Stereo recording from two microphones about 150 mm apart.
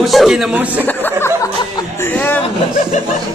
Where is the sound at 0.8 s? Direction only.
15° left (ahead or behind).